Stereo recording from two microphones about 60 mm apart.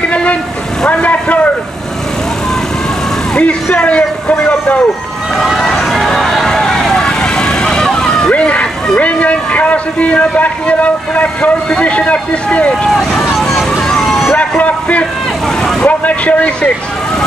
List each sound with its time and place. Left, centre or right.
0.0 s vehicle: left
3.3 s speech: left
5.4 s vehicle: centre
8.8 s a man's voice: centre
13.4 s vehicle: centre
14.6 s a sound: left
15.8 s speech: left